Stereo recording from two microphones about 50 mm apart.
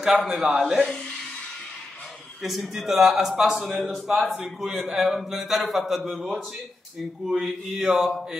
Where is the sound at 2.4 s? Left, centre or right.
Centre.